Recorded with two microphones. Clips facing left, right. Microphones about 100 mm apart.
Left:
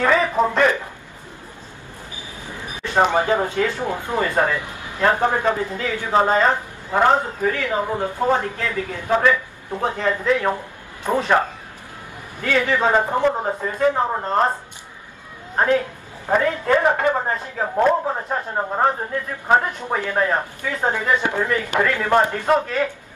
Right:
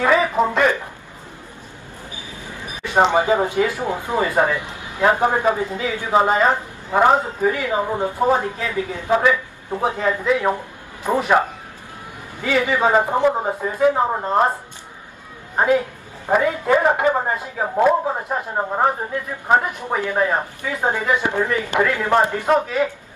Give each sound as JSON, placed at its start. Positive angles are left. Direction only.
{"t": 0.0, "sound": "a sound", "side_deg": -5}
{"t": 2.5, "sound": "speech", "side_deg": -15}
{"t": 15.5, "sound": "speech", "side_deg": -10}